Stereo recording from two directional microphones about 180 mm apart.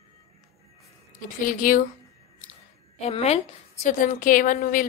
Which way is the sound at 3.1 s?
35° left (ahead or behind).